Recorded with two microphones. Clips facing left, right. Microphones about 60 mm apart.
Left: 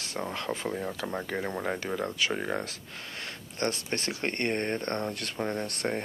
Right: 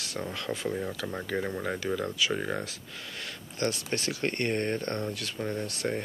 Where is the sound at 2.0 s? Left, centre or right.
Left.